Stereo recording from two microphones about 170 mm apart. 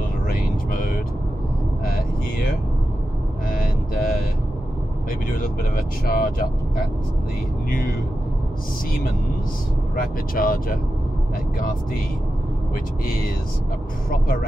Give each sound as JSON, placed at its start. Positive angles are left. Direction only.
{"t": 0.7, "sound": "speech", "side_deg": 55}
{"t": 3.4, "sound": "vehicle", "side_deg": 55}
{"t": 5.4, "sound": "speech", "side_deg": 55}
{"t": 9.9, "sound": "speech", "side_deg": 55}
{"t": 13.0, "sound": "speech", "side_deg": 55}